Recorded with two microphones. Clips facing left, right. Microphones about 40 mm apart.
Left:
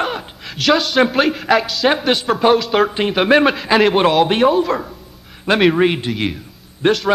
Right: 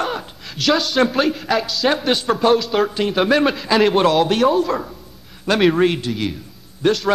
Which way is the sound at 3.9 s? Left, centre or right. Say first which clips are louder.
Left 2 dB; left.